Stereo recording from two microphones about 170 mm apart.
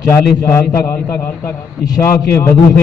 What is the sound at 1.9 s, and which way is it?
Speech, 15° left (ahead or behind).